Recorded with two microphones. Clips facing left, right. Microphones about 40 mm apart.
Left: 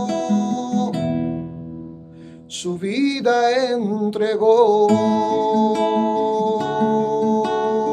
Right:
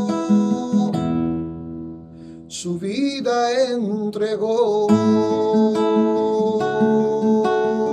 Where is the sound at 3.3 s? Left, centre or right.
Left.